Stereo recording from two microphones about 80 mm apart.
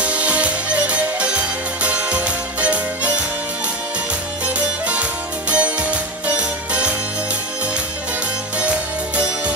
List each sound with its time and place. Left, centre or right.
0.0 s music: centre
4.6 s music: centre
8.5 s music: centre